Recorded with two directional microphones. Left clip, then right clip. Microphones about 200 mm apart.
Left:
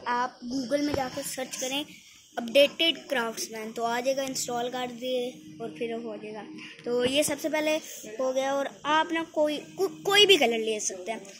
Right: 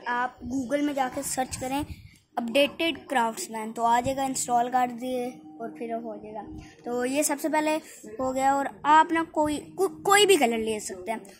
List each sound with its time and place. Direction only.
0.0 s speech: 15° right (ahead or behind)
0.7 s speech: 35° right (ahead or behind)
1.2 s speech: 55° right (ahead or behind)
5.8 s speech: 20° right (ahead or behind)
6.9 s speech: 35° right (ahead or behind)
7.4 s speech: 50° right (ahead or behind)